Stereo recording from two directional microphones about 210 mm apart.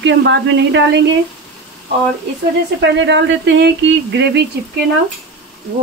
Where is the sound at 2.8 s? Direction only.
55° right (ahead or behind).